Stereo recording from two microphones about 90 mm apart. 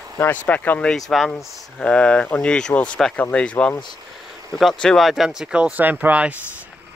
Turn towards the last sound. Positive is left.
turn(degrees=-15)  # may be behind; listen again after turning